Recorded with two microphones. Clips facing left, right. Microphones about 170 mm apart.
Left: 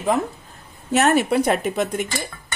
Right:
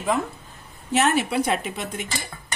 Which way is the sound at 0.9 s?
45° left (ahead or behind).